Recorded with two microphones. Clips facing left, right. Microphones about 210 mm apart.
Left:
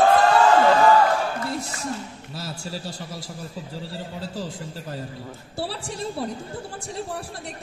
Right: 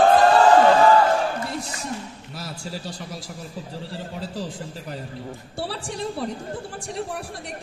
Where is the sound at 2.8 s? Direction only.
25° left (ahead or behind).